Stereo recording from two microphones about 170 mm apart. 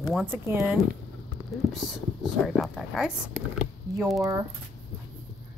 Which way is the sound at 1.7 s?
Centre (ahead or behind).